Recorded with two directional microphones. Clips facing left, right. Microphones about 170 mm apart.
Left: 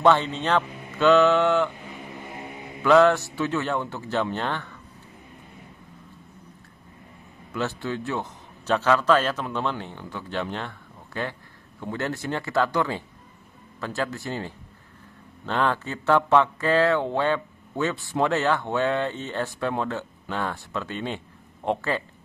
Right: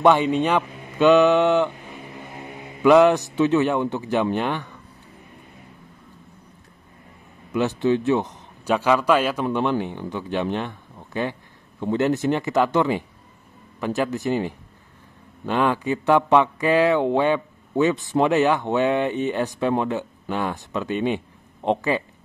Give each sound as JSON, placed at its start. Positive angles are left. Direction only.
{"t": 0.0, "sound": "a man's voice", "side_deg": -15}
{"t": 2.8, "sound": "a man's voice", "side_deg": -15}
{"t": 7.5, "sound": "a man's voice", "side_deg": -20}